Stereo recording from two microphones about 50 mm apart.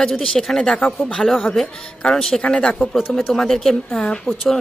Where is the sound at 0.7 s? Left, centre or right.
Left.